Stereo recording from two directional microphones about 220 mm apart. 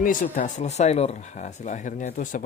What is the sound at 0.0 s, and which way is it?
Speech, 35° left (ahead or behind).